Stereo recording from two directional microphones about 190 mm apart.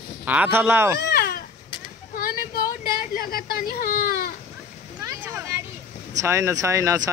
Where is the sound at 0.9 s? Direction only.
60° left (ahead or behind).